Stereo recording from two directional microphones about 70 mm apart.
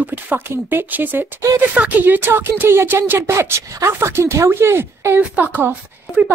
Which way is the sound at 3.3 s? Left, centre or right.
Right.